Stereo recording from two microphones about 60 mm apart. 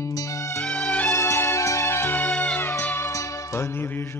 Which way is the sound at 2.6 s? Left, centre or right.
Left.